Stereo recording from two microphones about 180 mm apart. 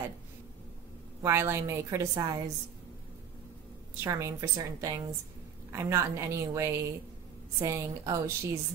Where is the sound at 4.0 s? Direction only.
15° right (ahead or behind).